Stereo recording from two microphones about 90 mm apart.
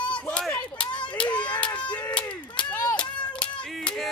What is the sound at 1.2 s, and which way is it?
Children playing, 60° left (ahead or behind).